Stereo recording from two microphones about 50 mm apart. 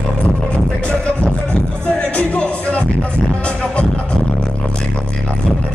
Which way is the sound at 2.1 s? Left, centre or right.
Left.